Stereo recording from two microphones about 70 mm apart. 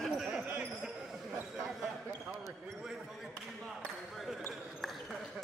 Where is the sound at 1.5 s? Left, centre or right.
Centre.